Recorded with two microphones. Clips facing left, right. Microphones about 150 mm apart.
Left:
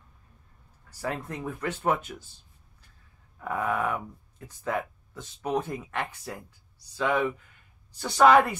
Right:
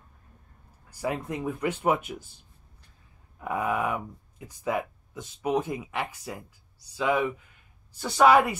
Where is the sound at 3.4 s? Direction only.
10° right (ahead or behind).